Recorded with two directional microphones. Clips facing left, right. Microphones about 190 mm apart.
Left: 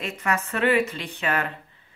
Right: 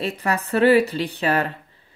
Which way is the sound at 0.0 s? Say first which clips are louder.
Right 3 dB; 35° right (ahead or behind).